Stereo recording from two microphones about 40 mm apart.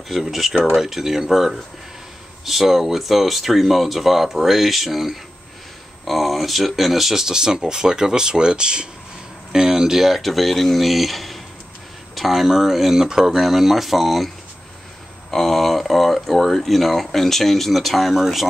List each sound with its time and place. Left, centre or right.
0.1 s speech: centre
15.3 s speech: centre